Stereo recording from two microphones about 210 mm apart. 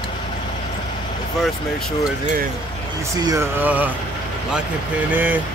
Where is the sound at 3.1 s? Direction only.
15° right (ahead or behind).